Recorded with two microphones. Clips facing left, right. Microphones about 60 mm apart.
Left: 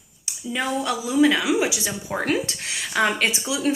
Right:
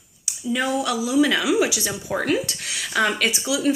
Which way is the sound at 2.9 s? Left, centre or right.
Left.